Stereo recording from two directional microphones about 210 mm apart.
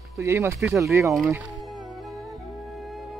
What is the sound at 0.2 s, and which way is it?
Speech, 10° right (ahead or behind).